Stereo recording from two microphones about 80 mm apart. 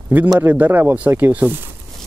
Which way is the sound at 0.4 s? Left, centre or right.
Right.